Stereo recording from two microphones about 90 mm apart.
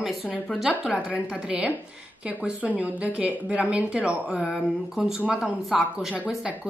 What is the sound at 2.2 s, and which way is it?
Speech, 15° right (ahead or behind).